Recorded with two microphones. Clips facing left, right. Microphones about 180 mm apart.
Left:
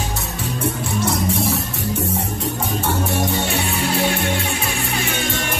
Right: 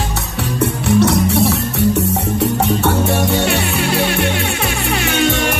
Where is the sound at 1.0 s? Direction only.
70° right (ahead or behind).